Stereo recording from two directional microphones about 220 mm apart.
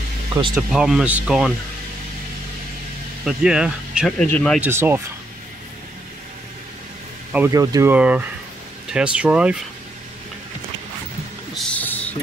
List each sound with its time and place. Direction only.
0.6 s speech: centre (ahead or behind)
3.3 s speech: 5° right (ahead or behind)
4.6 s speech: 10° right (ahead or behind)
7.3 s speech: 15° right (ahead or behind)
11.5 s vehicle: 5° left (ahead or behind)